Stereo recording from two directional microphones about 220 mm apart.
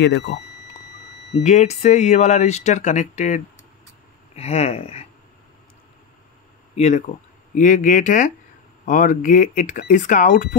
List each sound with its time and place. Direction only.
1.4 s speech: 30° left (ahead or behind)
6.7 s speech: 30° left (ahead or behind)